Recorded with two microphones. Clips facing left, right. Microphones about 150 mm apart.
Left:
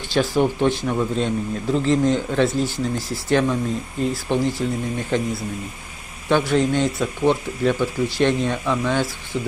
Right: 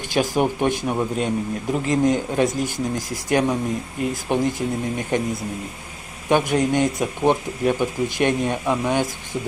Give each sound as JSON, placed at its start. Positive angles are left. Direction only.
{"t": 0.1, "sound": "a man's voice", "side_deg": -15}